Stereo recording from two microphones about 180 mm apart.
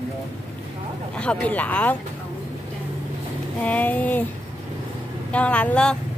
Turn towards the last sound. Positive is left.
turn(degrees=5)  # may be behind; listen again after turning